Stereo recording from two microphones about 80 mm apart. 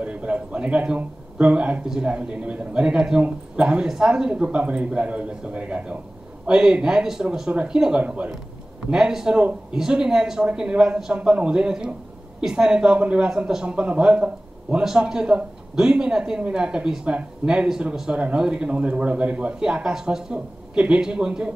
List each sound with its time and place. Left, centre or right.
0.0 s a man's voice: centre